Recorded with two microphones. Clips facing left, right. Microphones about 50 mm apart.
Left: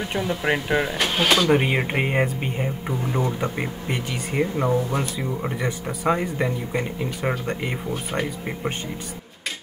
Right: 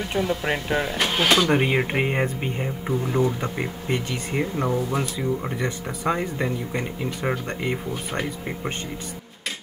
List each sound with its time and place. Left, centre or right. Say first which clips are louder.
0.0 s speech: even; centre
0.9 s speech: right 3 dB; centre
3.2 s speech: right 1 dB; centre